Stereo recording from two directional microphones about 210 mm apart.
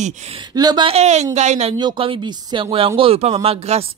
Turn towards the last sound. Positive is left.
turn(degrees=-30)  # may be behind; listen again after turning